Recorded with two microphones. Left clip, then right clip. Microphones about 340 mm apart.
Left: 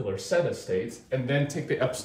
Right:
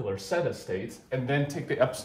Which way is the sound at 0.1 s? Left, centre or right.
Centre.